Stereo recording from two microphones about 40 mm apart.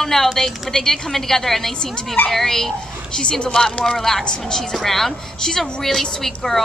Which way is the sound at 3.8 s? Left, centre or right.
Centre.